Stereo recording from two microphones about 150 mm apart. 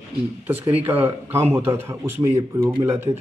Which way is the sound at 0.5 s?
10° right (ahead or behind).